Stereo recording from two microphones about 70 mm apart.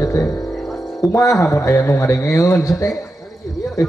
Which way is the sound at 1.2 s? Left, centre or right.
Left.